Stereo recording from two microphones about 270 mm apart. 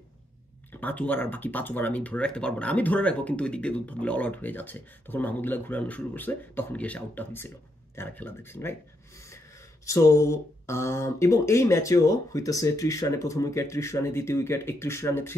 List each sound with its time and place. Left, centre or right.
0.7 s speech: centre
9.8 s speech: centre